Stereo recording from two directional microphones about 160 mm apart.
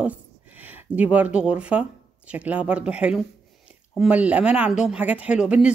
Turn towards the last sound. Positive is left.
turn(degrees=-5)  # may be behind; listen again after turning